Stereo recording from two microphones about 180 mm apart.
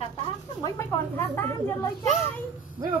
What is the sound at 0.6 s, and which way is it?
Speech, 15° left (ahead or behind).